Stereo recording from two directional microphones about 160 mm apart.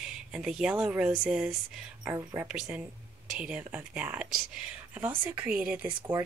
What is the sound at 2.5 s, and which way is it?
Speech, 5° right (ahead or behind).